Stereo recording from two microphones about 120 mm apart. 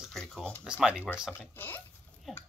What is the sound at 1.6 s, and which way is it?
Speech, 15° left (ahead or behind).